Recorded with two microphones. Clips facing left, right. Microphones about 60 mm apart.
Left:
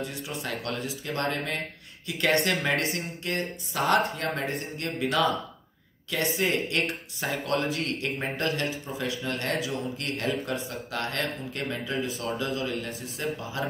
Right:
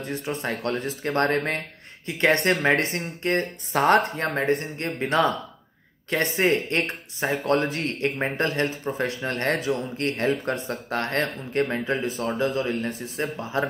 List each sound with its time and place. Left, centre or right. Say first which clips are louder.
0.0 s speech: right 5 dB; right
2.0 s speech: right 4 dB; right